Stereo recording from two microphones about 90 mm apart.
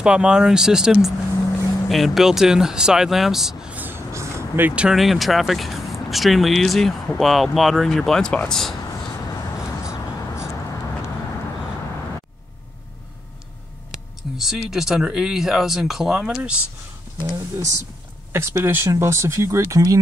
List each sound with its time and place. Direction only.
0.0 s speech: 10° right (ahead or behind)
3.7 s vehicle: 20° right (ahead or behind)
4.1 s vehicle: 30° right (ahead or behind)
4.8 s speech: centre (ahead or behind)
14.3 s speech: 5° right (ahead or behind)
17.3 s speech: 40° right (ahead or behind)